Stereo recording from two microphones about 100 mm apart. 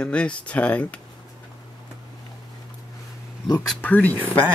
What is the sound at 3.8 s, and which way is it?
Speech, 15° left (ahead or behind).